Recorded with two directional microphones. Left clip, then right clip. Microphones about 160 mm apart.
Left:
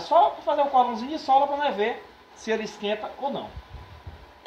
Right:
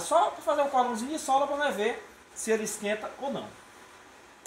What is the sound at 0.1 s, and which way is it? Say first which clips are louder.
Speech: left 5 dB; 35° right (ahead or behind).